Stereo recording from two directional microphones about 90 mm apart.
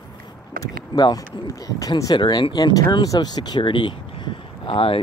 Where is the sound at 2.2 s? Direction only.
55° left (ahead or behind).